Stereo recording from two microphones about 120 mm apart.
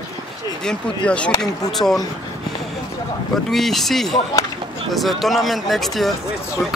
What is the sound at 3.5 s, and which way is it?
Speech, centre (ahead or behind).